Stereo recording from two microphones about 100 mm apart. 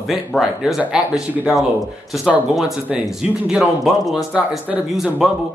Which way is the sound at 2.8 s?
10° right (ahead or behind).